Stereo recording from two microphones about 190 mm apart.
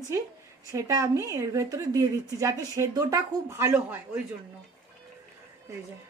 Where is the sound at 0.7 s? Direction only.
15° right (ahead or behind).